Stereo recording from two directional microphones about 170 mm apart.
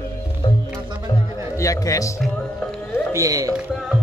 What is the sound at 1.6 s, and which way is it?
Speech, 20° left (ahead or behind).